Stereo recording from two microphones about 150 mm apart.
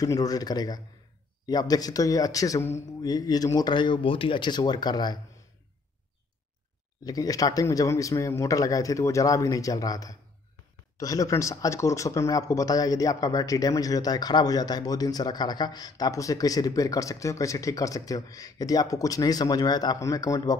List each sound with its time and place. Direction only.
0.0 s speech: 25° left (ahead or behind)
7.1 s speech: 25° left (ahead or behind)